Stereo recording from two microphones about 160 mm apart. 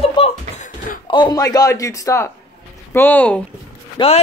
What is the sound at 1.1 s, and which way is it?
A man's voice, 25° left (ahead or behind).